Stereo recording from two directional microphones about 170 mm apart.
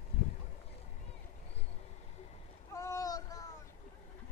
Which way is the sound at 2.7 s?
20° left (ahead or behind).